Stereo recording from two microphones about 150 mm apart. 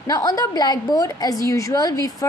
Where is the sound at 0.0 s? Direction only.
25° left (ahead or behind).